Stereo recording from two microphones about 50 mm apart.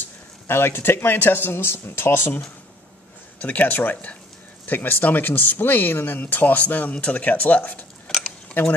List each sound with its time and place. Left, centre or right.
0.5 s speech: left
3.3 s speech: left
6.2 s speech: left
8.6 s speech: left